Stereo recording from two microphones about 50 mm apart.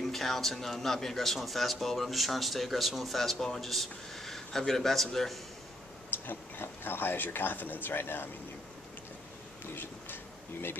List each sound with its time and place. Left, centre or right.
0.0 s a man's voice: centre
6.2 s speech: left
9.8 s speech: left